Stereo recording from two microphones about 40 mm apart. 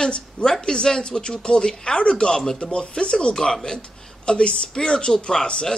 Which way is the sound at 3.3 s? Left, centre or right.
Centre.